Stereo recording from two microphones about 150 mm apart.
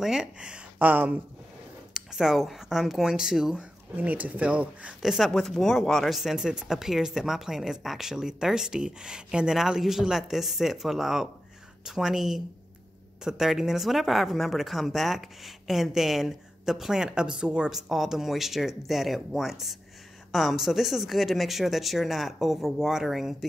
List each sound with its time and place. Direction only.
0.0 s speech: 5° right (ahead or behind)